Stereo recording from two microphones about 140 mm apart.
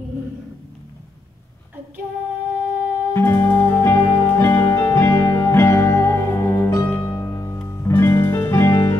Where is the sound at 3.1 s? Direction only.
15° left (ahead or behind).